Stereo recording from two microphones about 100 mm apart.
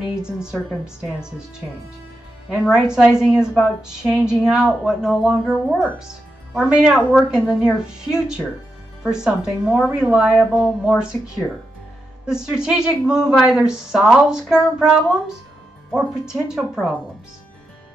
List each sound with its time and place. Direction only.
0.0 s a woman's voice: 10° right (ahead or behind)
2.7 s a woman's voice: 10° right (ahead or behind)
7.0 s a woman's voice: 15° left (ahead or behind)
7.2 s a woman's voice: 10° right (ahead or behind)